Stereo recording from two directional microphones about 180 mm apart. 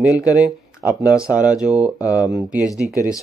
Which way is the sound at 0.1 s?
20° left (ahead or behind).